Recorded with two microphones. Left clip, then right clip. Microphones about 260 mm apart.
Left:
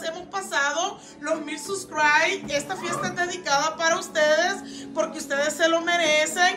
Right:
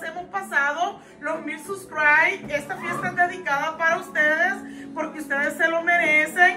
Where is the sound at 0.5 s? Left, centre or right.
Centre.